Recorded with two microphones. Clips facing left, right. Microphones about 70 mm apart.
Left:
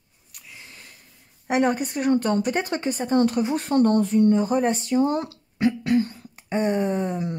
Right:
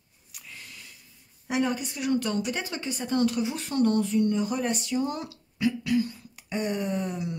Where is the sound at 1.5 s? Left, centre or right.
Left.